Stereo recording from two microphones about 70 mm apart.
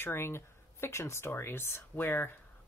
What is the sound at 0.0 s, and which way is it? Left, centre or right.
Speech, left.